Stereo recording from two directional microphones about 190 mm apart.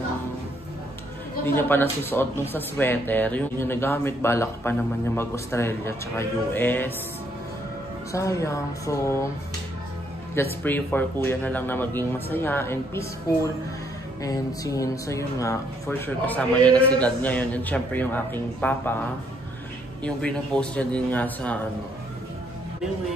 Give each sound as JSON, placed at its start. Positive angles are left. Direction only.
{"t": 1.7, "sound": "speech", "side_deg": 10}
{"t": 8.1, "sound": "speech", "side_deg": 15}
{"t": 10.3, "sound": "speech", "side_deg": 10}